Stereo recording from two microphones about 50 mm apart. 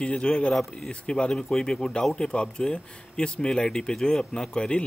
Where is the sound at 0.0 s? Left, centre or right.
Centre.